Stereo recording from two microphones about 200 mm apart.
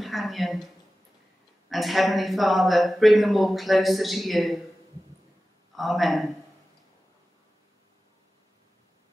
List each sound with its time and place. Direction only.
0.0 s speech: centre (ahead or behind)
1.7 s speech: centre (ahead or behind)
5.8 s speech: centre (ahead or behind)